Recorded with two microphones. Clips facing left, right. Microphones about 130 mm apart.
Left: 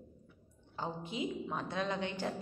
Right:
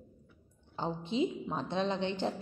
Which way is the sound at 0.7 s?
25° right (ahead or behind).